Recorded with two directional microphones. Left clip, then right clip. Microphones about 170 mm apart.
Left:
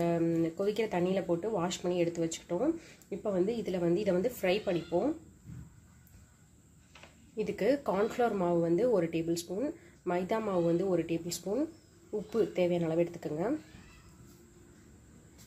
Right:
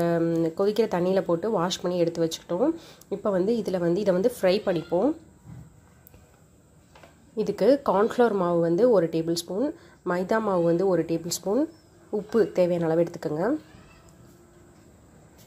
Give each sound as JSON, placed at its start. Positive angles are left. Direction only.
{"t": 0.0, "sound": "speech", "side_deg": -30}
{"t": 7.3, "sound": "speech", "side_deg": -30}